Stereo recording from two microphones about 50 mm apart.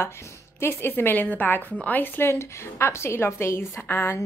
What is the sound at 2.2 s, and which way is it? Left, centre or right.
A woman's voice, left.